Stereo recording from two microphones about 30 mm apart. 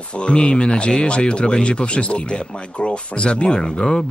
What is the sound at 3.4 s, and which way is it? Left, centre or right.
Speech, left.